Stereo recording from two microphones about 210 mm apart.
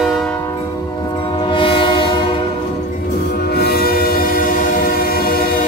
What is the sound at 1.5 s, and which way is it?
Train horn, 25° left (ahead or behind).